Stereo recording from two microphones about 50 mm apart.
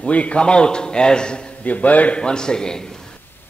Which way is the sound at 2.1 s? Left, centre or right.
Centre.